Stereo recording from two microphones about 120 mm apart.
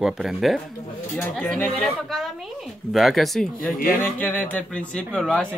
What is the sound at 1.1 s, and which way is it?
Speech, 10° left (ahead or behind).